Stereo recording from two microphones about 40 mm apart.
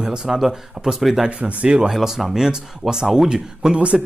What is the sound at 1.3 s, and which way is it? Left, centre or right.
Speech, right.